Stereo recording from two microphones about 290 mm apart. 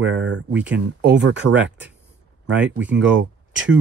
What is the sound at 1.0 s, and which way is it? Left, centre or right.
Speech, right.